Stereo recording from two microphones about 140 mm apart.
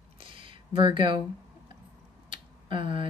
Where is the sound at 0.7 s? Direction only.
35° right (ahead or behind).